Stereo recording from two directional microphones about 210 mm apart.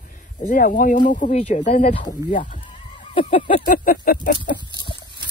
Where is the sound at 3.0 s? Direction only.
25° left (ahead or behind).